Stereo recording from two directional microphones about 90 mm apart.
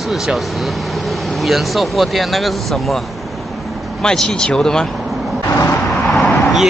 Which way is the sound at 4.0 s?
5° left (ahead or behind).